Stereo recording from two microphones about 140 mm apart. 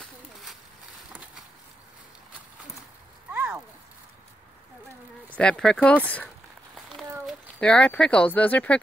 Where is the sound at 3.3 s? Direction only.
15° right (ahead or behind).